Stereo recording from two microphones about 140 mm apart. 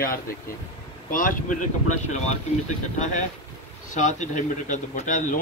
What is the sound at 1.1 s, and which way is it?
Speech, 75° left (ahead or behind).